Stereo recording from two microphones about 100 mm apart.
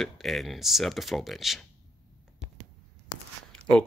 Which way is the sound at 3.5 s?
10° left (ahead or behind).